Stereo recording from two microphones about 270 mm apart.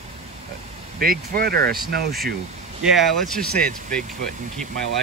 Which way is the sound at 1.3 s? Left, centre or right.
Right.